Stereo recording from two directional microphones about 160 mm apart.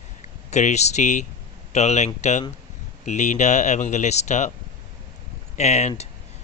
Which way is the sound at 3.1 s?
50° left (ahead or behind).